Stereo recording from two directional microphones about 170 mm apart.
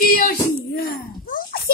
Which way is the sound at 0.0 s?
55° left (ahead or behind).